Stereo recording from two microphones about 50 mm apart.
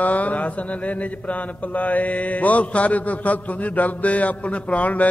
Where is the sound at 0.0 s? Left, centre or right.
Left.